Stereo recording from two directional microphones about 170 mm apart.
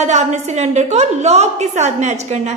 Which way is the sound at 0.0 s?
45° right (ahead or behind).